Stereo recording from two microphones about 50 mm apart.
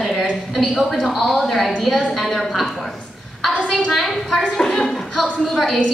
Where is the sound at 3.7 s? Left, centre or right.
Centre.